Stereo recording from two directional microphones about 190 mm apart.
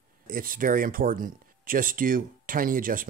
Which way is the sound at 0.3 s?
50° right (ahead or behind).